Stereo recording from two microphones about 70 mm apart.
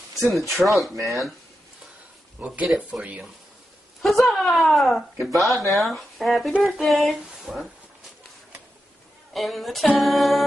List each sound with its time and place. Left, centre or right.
0.2 s speech: centre
2.4 s speech: centre
4.0 s speech: centre
9.3 s speech: centre